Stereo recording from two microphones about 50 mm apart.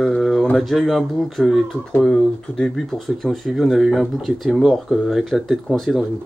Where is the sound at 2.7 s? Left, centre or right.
Centre.